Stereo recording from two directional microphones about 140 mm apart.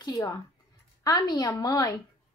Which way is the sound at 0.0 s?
25° left (ahead or behind).